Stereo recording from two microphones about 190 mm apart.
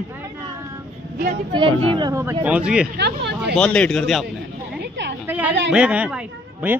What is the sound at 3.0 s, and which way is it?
Speech, 60° right (ahead or behind).